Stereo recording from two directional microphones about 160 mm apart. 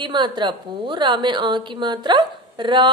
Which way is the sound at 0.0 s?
30° right (ahead or behind).